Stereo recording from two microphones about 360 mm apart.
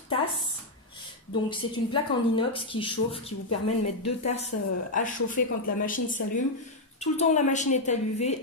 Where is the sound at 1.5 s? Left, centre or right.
Centre.